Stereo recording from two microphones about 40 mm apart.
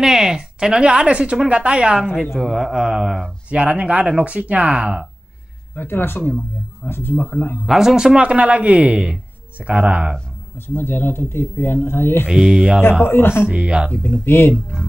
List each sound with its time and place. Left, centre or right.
0.0 s speech: centre
2.4 s speech: centre
2.7 s speech: centre
3.4 s speech: right
5.8 s speech: left
7.6 s speech: centre
8.2 s speech: right
10.7 s speech: left
12.3 s speech: centre
13.0 s speech: left
13.5 s speech: right
13.9 s speech: left
14.2 s speech: left
14.5 s speech: centre